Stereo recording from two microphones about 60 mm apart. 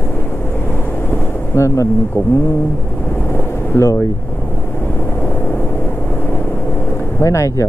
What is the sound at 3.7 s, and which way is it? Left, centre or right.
Speech, left.